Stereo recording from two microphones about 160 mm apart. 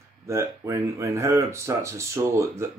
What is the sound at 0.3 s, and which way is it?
Speech, 20° right (ahead or behind).